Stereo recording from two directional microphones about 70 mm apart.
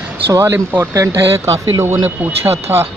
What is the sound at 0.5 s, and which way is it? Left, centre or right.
Speech, right.